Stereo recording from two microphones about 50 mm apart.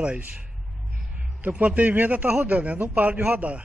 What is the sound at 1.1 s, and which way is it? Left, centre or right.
A man's voice, right.